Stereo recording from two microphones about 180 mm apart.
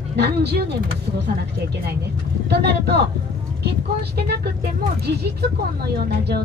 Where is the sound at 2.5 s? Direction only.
65° right (ahead or behind).